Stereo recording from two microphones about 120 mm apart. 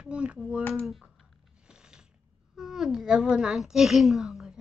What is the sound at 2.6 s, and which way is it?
A child's voice, 5° right (ahead or behind).